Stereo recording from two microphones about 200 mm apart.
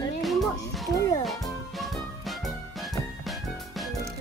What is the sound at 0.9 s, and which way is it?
Music, 15° left (ahead or behind).